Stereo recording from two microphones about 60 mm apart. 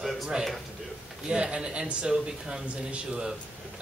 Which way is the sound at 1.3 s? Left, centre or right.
Centre.